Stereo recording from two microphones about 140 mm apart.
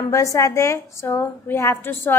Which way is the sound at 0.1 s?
25° left (ahead or behind).